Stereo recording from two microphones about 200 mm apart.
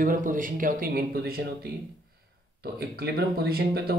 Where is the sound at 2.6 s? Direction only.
50° right (ahead or behind).